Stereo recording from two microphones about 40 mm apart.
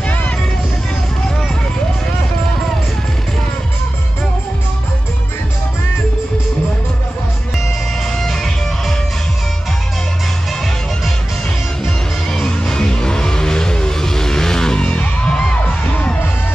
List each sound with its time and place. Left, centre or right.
0.0 s vehicle: left
8.2 s music: centre
12.3 s music: centre